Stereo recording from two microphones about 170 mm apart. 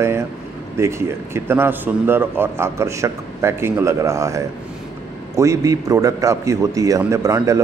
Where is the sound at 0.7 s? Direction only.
15° right (ahead or behind).